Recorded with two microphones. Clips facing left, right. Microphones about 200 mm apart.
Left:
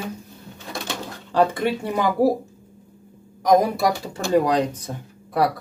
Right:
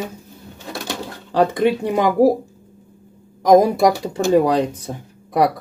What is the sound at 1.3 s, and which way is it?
Speech, 15° right (ahead or behind).